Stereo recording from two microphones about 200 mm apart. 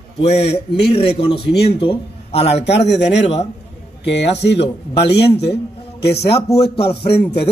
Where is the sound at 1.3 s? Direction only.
55° left (ahead or behind).